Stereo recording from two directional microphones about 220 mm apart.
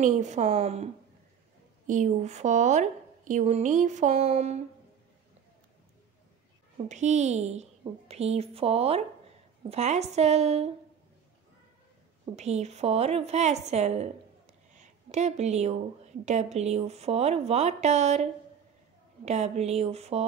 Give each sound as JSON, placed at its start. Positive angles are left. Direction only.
{"t": 0.0, "sound": "a woman's voice", "side_deg": -35}
{"t": 1.9, "sound": "a woman's voice", "side_deg": -35}
{"t": 6.9, "sound": "a woman's voice", "side_deg": -30}
{"t": 12.4, "sound": "a woman's voice", "side_deg": -30}
{"t": 14.7, "sound": "a sound", "side_deg": -30}
{"t": 16.3, "sound": "a woman's voice", "side_deg": -30}